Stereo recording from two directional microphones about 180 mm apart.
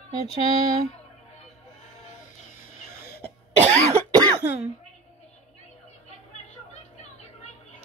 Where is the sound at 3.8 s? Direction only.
15° right (ahead or behind).